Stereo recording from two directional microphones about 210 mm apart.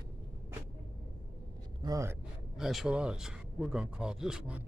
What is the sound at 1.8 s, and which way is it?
Speech, 15° right (ahead or behind).